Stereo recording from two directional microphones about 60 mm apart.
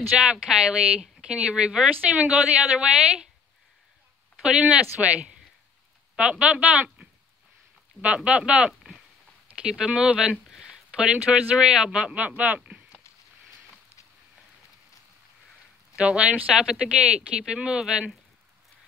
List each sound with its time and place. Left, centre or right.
0.2 s speech: centre
4.4 s speech: centre
7.0 s a sound: right
8.0 s speech: centre
12.5 s a sound: right
16.0 s speech: centre